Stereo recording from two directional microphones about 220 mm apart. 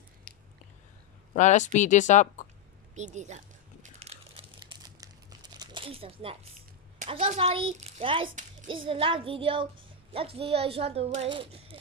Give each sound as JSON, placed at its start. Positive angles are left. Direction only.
{"t": 1.3, "sound": "speech", "side_deg": 35}
{"t": 2.9, "sound": "crumpling", "side_deg": -30}
{"t": 7.0, "sound": "speech", "side_deg": -30}